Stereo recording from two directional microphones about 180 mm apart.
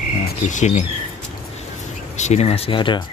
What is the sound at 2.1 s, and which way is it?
Speech, 40° left (ahead or behind).